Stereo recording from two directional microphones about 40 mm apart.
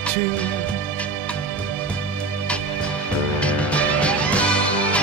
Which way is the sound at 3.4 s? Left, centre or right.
Left.